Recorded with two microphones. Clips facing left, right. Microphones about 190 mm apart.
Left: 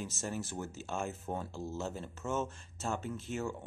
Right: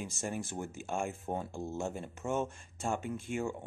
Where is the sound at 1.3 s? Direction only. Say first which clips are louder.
Right 2 dB; 20° right (ahead or behind).